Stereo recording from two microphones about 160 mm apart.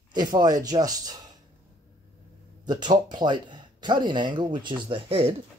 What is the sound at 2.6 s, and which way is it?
Speech, 25° right (ahead or behind).